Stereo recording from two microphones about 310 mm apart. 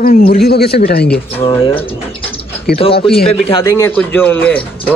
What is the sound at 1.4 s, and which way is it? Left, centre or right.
Speech, centre.